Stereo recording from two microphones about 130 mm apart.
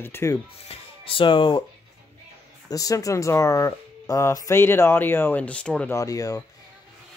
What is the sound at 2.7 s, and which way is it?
Speech, 25° left (ahead or behind).